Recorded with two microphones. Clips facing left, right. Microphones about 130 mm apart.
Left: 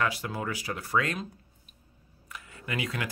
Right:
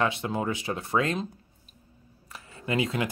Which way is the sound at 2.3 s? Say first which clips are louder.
Right 7 dB; 25° right (ahead or behind).